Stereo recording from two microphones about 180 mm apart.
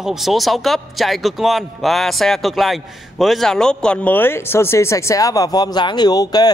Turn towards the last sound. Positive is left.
turn(degrees=20)  # may be behind; listen again after turning